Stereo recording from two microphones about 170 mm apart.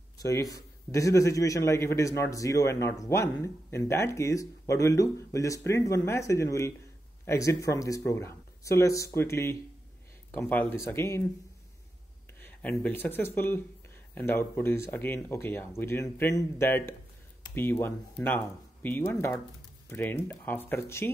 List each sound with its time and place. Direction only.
0.2 s a man's voice: 20° left (ahead or behind)
12.4 s a man's voice: 10° left (ahead or behind)